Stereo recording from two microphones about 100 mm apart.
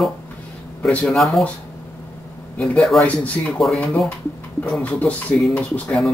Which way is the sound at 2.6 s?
5° left (ahead or behind).